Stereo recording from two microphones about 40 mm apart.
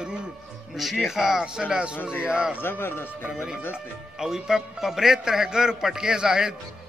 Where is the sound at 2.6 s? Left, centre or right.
Left.